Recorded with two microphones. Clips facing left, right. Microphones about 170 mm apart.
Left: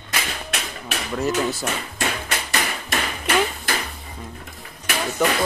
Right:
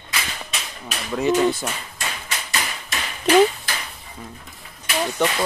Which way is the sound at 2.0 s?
60° left (ahead or behind).